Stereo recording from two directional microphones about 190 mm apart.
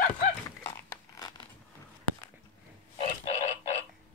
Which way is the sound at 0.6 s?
15° left (ahead or behind).